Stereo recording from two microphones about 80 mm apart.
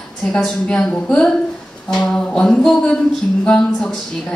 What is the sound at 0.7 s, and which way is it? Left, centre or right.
A woman's voice, centre.